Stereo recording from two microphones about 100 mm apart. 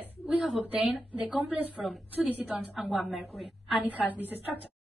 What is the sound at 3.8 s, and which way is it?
Speech, 15° right (ahead or behind).